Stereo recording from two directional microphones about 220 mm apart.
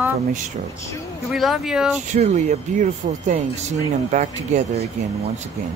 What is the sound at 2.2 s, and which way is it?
Speech, 30° right (ahead or behind).